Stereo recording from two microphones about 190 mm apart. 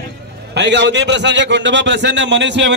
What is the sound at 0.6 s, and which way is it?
A man's voice, 65° right (ahead or behind).